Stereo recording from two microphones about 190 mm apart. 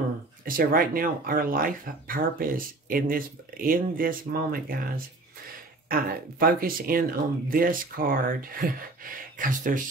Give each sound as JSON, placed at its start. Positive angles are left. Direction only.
{"t": 0.5, "sound": "speech", "side_deg": -50}